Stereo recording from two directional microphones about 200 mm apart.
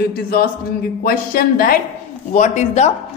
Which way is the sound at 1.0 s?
45° left (ahead or behind).